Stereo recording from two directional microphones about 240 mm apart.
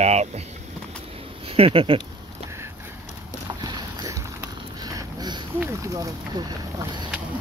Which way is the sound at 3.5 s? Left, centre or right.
Centre.